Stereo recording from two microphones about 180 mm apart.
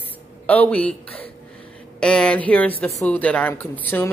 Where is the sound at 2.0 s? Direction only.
5° left (ahead or behind).